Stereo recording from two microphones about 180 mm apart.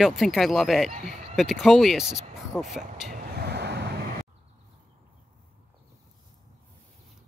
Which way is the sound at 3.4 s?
65° right (ahead or behind).